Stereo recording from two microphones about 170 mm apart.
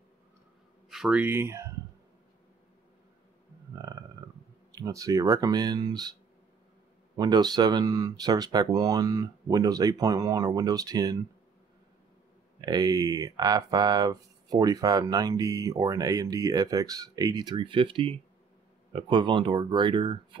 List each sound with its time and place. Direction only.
0.8 s speech: 5° right (ahead or behind)
3.8 s a sound: 20° right (ahead or behind)
4.7 s speech: 20° right (ahead or behind)
7.2 s speech: 25° right (ahead or behind)
12.5 s speech: 20° right (ahead or behind)